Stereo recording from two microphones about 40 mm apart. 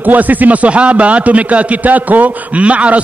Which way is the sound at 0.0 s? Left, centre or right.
Right.